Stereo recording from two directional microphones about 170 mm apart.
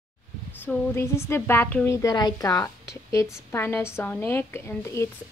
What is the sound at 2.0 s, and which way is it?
A woman's voice, 20° left (ahead or behind).